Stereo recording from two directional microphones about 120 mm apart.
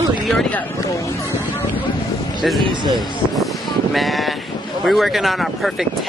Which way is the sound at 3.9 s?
Centre (ahead or behind).